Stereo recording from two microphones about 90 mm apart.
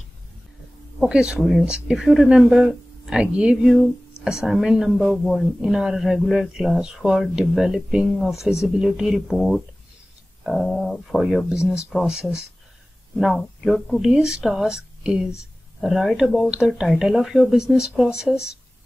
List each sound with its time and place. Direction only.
0.9 s speech: 10° right (ahead or behind)
1.4 s speech: centre (ahead or behind)
1.7 s speech: 10° right (ahead or behind)